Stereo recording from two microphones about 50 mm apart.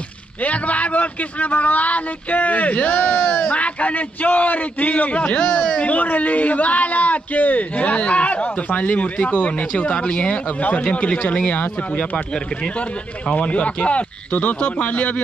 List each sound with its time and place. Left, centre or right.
0.4 s speech: left
13.3 s speech: left